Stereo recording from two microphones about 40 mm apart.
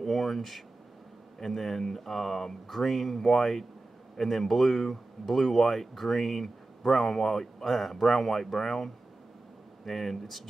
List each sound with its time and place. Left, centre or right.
0.0 s speech: centre